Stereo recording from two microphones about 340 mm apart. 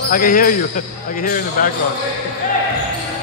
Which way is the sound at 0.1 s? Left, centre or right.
Left.